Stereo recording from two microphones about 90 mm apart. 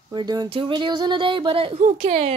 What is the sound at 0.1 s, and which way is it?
Speech, 50° right (ahead or behind).